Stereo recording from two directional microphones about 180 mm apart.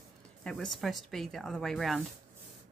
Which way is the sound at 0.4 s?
5° left (ahead or behind).